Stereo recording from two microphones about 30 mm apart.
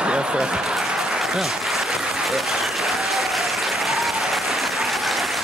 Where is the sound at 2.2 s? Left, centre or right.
Centre.